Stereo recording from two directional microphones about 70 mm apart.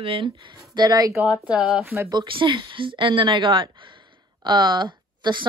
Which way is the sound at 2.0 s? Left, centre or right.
Right.